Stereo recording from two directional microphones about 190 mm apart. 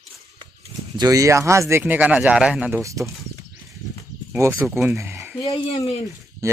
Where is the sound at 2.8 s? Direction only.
15° right (ahead or behind).